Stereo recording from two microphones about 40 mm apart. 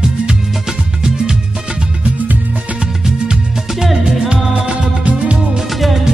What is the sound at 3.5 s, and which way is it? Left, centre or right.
Music, centre.